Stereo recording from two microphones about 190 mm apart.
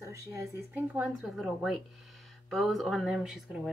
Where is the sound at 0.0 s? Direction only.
15° right (ahead or behind).